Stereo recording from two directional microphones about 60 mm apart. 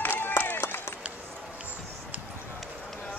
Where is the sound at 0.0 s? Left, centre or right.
Left.